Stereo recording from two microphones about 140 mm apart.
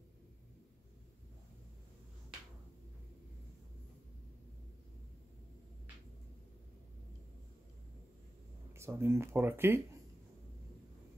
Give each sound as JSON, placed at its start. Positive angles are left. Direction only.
{"t": 8.7, "sound": "speech", "side_deg": -20}